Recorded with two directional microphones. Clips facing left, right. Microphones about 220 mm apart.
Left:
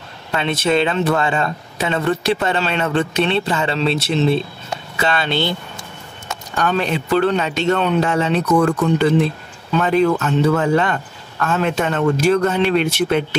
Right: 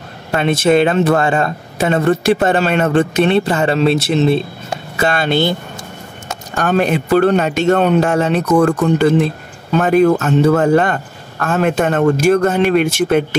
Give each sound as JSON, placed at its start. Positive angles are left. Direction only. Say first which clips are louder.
{"t": 0.3, "sound": "speech", "louder": "right 5 dB", "side_deg": -45}